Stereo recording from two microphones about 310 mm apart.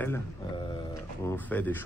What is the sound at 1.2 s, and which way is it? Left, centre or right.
Speech, centre.